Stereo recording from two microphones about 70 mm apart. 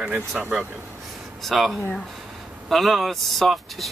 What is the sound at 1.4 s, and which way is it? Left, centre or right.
Speech, centre.